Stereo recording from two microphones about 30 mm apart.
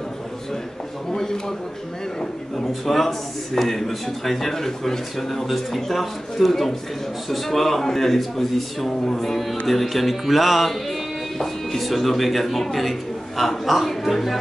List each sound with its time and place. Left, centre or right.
1.1 s a man's voice: centre
2.5 s speech: centre